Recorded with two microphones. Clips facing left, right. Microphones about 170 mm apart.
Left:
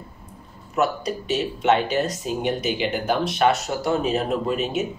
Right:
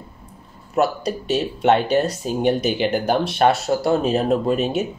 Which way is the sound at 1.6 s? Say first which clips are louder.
Right 4 dB; 40° right (ahead or behind).